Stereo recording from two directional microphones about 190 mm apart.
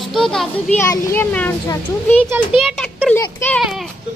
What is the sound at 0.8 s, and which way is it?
A child's voice, 15° left (ahead or behind).